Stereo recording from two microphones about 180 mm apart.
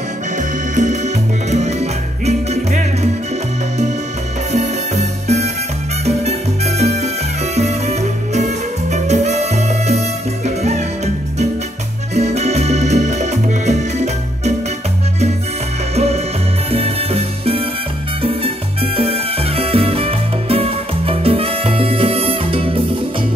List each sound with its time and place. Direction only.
0.7 s music: 40° right (ahead or behind)
4.5 s salsa music: 40° right (ahead or behind)
7.5 s music: 40° right (ahead or behind)
12.2 s music: 40° right (ahead or behind)
16.7 s music: 35° right (ahead or behind)
18.2 s salsa music: 30° right (ahead or behind)